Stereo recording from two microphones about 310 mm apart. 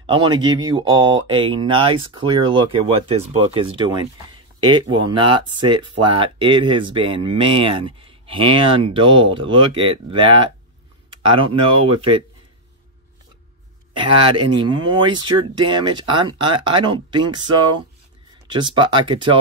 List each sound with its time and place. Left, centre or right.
0.0 s speech: centre
13.9 s speech: centre